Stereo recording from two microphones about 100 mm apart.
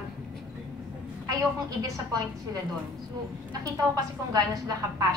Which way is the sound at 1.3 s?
35° right (ahead or behind).